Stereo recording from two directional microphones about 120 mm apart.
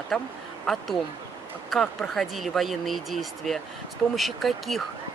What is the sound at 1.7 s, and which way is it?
Speech, centre (ahead or behind).